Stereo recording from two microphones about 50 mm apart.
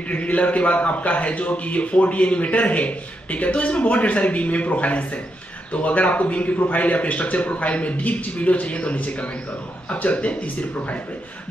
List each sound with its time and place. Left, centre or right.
0.1 s a man's voice: left